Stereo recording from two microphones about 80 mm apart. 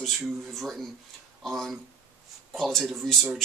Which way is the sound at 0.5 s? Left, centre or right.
Centre.